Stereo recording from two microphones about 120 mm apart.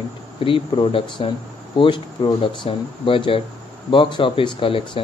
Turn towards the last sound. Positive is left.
turn(degrees=50)  # may be behind; listen again after turning